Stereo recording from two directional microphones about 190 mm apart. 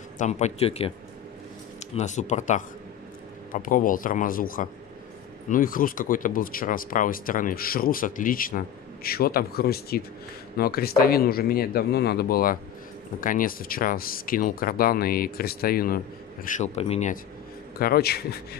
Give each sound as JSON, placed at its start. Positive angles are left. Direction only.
{"t": 0.2, "sound": "speech", "side_deg": 35}
{"t": 16.4, "sound": "speech", "side_deg": 40}
{"t": 17.7, "sound": "speech", "side_deg": 50}